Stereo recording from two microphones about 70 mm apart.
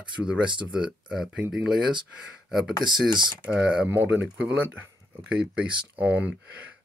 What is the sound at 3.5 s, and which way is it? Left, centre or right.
Speech, centre.